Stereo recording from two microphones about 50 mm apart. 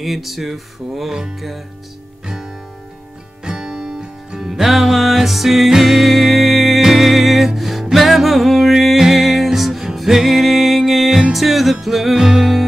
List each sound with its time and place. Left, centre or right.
0.0 s music: centre
2.2 s music: centre
4.5 s music: centre